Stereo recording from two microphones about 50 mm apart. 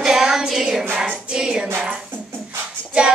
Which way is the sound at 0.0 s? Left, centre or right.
Centre.